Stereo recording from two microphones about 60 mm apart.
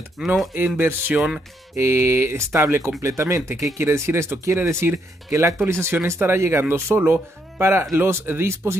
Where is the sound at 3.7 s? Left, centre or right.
Right.